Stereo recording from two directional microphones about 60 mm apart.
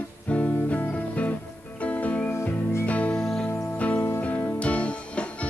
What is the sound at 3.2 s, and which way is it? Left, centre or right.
Music, centre.